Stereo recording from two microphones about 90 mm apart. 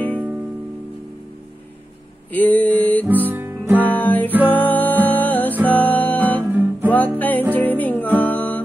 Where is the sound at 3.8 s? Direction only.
20° left (ahead or behind).